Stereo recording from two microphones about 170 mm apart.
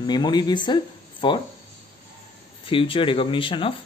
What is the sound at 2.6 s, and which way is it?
Speech, 30° left (ahead or behind).